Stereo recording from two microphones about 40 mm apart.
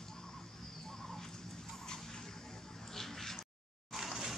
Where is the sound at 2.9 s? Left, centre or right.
Centre.